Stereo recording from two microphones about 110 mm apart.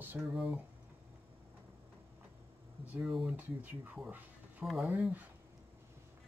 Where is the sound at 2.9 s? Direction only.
10° right (ahead or behind).